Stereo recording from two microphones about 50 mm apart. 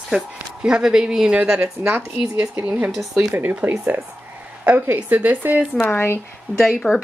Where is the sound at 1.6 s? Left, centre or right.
Right.